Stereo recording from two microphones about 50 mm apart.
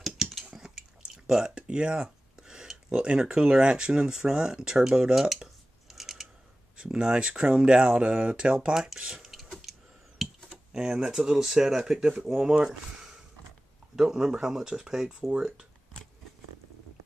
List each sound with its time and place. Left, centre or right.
0.0 s a sound: centre
0.6 s speech: centre
5.9 s scissors: centre
6.8 s speech: centre
9.2 s printer: centre
10.7 s speech: centre
13.9 s speech: centre